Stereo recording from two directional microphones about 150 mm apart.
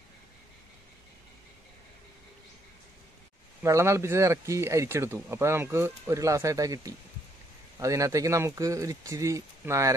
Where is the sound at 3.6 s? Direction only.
20° right (ahead or behind).